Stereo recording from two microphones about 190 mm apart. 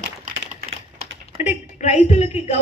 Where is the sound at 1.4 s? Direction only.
35° left (ahead or behind).